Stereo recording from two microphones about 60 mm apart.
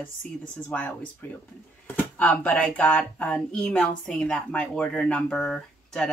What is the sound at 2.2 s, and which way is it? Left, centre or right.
Speech, left.